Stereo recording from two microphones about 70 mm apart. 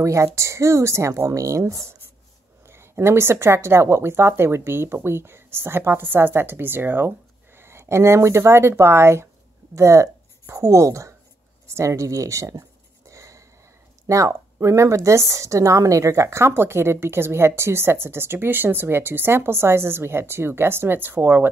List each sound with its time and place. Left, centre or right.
0.0 s speech: right
2.6 s speech: right
13.1 s a sound: right
14.0 s speech: right